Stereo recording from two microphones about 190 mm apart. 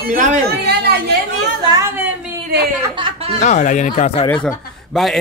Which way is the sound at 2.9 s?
30° right (ahead or behind).